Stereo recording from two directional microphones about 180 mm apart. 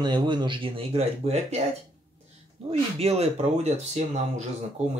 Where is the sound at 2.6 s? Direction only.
35° right (ahead or behind).